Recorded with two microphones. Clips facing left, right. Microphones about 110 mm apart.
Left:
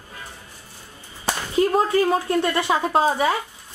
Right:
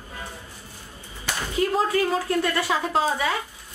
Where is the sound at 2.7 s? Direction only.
35° left (ahead or behind).